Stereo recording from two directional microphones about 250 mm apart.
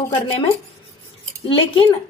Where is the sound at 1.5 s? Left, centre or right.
Centre.